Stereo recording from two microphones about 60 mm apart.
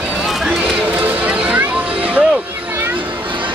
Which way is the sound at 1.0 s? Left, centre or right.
Right.